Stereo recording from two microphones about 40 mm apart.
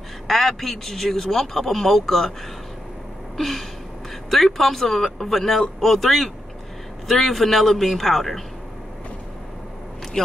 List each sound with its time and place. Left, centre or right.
0.3 s speech: centre
3.3 s gasp: centre
4.3 s speech: centre
10.2 s speech: centre